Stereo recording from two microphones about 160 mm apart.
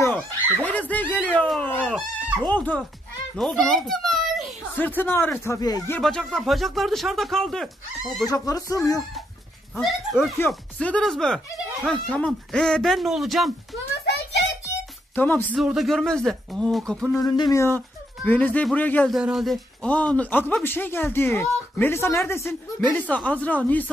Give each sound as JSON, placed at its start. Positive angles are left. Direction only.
{"t": 0.6, "sound": "a child's voice", "side_deg": 10}
{"t": 4.7, "sound": "speech", "side_deg": 10}
{"t": 5.9, "sound": "speech", "side_deg": 5}
{"t": 8.3, "sound": "speech", "side_deg": 20}
{"t": 9.8, "sound": "speech", "side_deg": 0}
{"t": 15.1, "sound": "speech", "side_deg": 10}
{"t": 15.5, "sound": "speech", "side_deg": -5}
{"t": 17.1, "sound": "speech", "side_deg": 20}
{"t": 19.1, "sound": "speech", "side_deg": 0}